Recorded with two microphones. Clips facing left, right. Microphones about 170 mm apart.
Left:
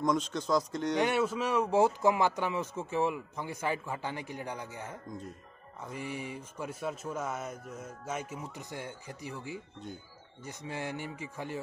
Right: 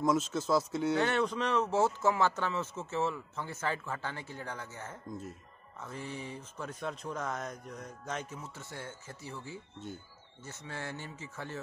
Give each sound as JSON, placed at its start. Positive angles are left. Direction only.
{"t": 0.0, "sound": "speech", "side_deg": -5}
{"t": 0.9, "sound": "speech", "side_deg": 10}